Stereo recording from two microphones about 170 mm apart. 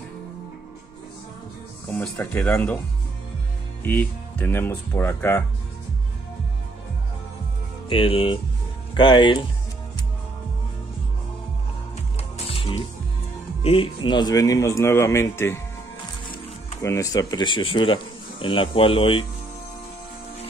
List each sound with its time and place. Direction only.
1.9 s speech: 10° left (ahead or behind)
3.8 s speech: 10° left (ahead or behind)
7.9 s speech: 30° left (ahead or behind)
12.2 s music: 35° left (ahead or behind)
13.6 s speech: 35° left (ahead or behind); by 15.6 s 15° left (ahead or behind)
16.8 s speech: 20° left (ahead or behind); by 19.2 s 35° left (ahead or behind)